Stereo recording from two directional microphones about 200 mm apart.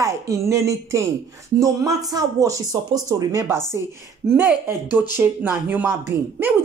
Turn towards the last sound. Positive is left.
turn(degrees=-10)  # may be behind; listen again after turning